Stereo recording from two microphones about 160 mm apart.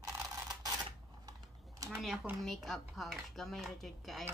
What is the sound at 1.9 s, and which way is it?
Speech, centre (ahead or behind).